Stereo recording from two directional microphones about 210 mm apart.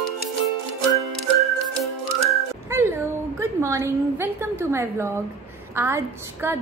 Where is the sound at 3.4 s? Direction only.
15° right (ahead or behind).